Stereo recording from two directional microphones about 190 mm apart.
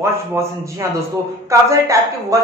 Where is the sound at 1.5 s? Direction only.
15° right (ahead or behind).